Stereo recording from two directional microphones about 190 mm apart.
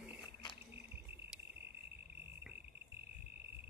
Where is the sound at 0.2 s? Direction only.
25° left (ahead or behind).